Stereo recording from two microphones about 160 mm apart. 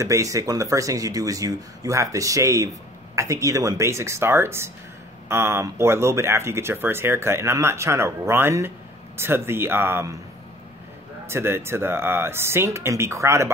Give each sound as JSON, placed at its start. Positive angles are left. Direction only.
{"t": 0.0, "sound": "speech", "side_deg": -20}
{"t": 11.2, "sound": "speech", "side_deg": -15}